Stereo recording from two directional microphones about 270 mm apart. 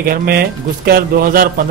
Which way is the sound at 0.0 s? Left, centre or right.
Right.